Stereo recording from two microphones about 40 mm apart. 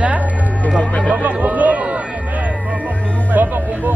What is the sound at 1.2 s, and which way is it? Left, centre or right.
Speech, right.